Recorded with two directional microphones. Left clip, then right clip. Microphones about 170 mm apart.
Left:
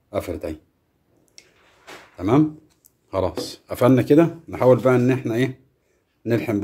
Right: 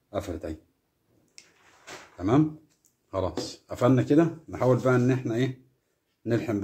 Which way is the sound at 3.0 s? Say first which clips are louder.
Left 6 dB; 50° left (ahead or behind).